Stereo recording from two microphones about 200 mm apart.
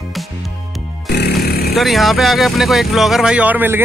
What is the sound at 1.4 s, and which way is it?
Vehicle, 50° left (ahead or behind).